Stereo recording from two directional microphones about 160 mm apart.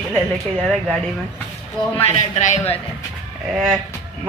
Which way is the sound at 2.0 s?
45° left (ahead or behind).